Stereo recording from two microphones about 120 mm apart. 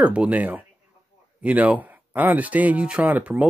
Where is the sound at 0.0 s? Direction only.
10° right (ahead or behind).